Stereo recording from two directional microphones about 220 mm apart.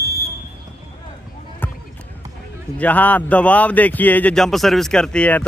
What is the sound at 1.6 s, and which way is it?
Basketball bounce, 10° left (ahead or behind).